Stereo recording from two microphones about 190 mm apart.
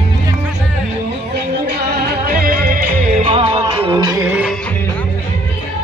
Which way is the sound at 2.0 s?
55° right (ahead or behind).